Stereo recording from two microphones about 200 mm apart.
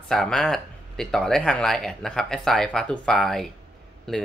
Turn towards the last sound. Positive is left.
turn(degrees=5)  # may be behind; listen again after turning